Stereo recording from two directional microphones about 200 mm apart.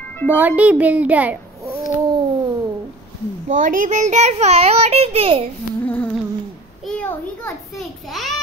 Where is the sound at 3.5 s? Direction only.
40° right (ahead or behind).